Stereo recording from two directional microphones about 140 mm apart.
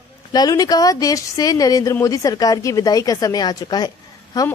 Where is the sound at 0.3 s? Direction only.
30° left (ahead or behind).